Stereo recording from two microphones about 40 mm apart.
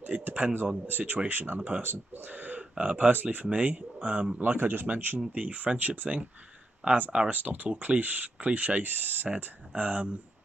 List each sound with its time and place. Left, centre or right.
0.2 s speech: right
3.1 s speech: right
4.4 s speech: right
7.2 s speech: right